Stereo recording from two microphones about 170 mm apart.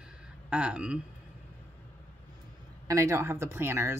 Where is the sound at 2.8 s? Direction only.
20° right (ahead or behind).